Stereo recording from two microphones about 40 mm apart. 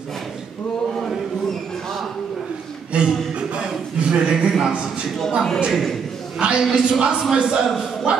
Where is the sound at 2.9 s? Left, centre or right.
Right.